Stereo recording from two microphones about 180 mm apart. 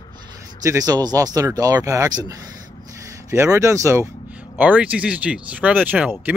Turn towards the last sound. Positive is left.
turn(degrees=-10)  # may be behind; listen again after turning